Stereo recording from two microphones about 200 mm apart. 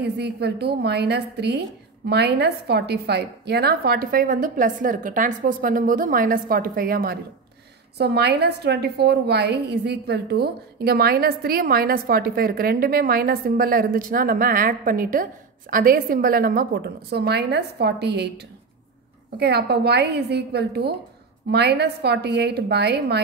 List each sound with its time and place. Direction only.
0.0 s a woman's voice: 55° right (ahead or behind)
19.3 s a woman's voice: 55° right (ahead or behind)